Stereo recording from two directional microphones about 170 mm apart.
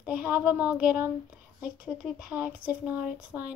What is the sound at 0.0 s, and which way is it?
Speech, 5° right (ahead or behind).